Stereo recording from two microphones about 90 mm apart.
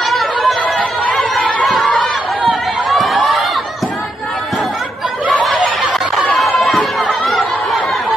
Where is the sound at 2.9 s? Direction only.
Centre (ahead or behind).